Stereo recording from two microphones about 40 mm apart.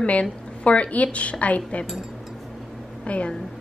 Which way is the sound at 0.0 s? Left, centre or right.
Left.